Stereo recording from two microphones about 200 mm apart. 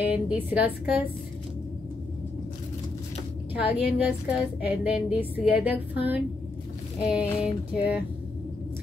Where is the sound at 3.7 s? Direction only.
5° right (ahead or behind).